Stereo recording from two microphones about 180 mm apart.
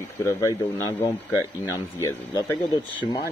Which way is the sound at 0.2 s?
15° left (ahead or behind).